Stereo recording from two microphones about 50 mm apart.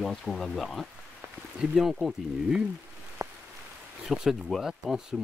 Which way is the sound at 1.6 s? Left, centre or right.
Centre.